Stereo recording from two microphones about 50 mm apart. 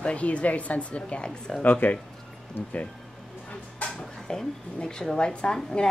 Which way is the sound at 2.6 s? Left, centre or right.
Left.